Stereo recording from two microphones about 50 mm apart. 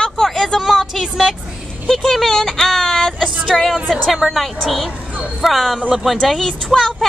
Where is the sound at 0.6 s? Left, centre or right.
Centre.